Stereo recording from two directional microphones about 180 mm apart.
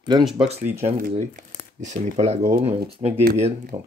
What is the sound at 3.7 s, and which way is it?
Speech, 15° right (ahead or behind).